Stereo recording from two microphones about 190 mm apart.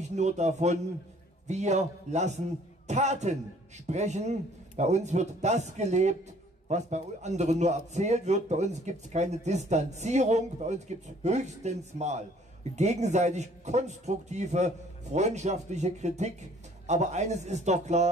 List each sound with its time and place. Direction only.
0.1 s a man's voice: 35° right (ahead or behind)